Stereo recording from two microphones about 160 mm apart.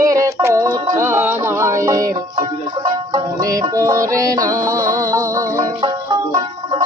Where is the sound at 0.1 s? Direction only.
20° right (ahead or behind).